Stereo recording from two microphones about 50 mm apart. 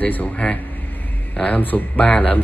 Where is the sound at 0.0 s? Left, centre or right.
Left.